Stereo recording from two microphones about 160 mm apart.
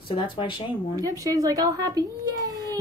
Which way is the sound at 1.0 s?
25° right (ahead or behind).